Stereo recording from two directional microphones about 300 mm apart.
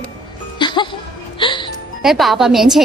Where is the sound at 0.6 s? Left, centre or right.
Centre.